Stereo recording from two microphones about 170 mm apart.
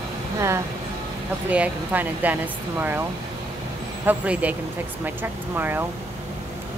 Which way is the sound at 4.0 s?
10° right (ahead or behind).